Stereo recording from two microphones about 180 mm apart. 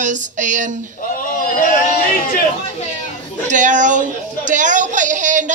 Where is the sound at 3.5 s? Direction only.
45° right (ahead or behind).